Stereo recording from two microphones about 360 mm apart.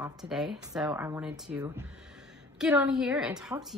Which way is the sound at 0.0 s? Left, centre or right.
Centre.